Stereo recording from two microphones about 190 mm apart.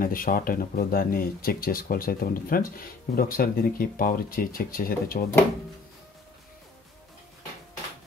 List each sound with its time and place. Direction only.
0.0 s speech: 50° left (ahead or behind)